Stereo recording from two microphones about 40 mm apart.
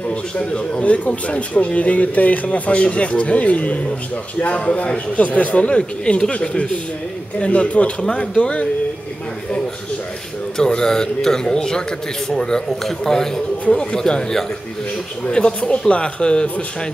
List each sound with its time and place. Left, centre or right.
0.1 s a man's voice: left
10.6 s a man's voice: centre